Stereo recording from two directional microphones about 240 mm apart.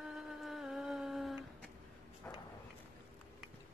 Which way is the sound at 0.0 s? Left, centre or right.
Centre.